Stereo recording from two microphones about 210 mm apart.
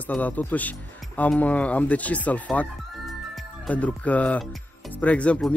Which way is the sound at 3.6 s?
5° left (ahead or behind).